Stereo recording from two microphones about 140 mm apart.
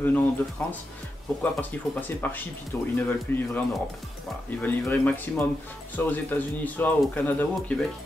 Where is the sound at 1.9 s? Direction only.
15° left (ahead or behind).